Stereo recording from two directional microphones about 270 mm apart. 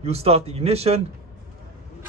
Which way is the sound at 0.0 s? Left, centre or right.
Right.